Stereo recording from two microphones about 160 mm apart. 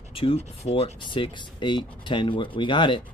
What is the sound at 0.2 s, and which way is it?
Speech, 35° left (ahead or behind).